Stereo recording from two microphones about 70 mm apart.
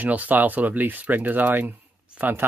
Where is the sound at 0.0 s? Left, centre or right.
Right.